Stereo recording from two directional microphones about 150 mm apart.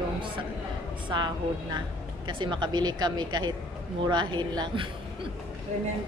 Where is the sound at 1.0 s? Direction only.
30° right (ahead or behind).